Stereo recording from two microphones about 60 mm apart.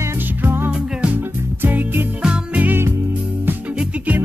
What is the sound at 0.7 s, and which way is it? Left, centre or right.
Music, centre.